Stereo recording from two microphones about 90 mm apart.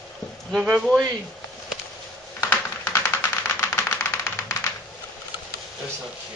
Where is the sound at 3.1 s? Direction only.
25° left (ahead or behind).